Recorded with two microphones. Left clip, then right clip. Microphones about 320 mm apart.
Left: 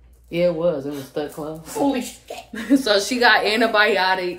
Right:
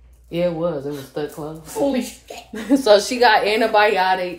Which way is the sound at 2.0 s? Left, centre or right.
Centre.